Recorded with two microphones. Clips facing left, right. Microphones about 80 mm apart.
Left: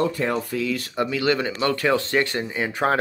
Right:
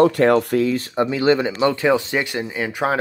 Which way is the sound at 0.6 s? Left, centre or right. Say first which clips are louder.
Right 5 dB; right.